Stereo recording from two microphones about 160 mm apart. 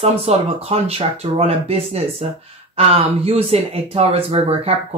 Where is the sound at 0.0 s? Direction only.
40° right (ahead or behind).